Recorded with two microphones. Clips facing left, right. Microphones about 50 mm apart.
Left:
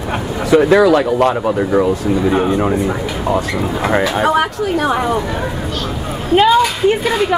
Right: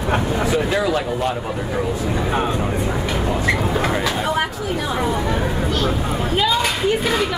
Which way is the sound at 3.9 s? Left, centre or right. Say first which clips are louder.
Left 7 dB; left.